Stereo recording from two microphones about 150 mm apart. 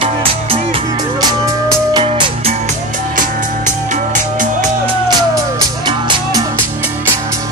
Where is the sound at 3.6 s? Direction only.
55° right (ahead or behind).